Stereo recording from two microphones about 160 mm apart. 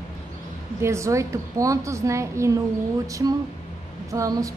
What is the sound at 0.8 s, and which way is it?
A woman's voice, 20° right (ahead or behind).